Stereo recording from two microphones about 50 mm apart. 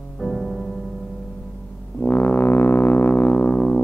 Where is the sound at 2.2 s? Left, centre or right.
Left.